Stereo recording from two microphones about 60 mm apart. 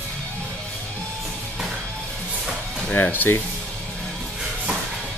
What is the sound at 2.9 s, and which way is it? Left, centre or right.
Speech, left.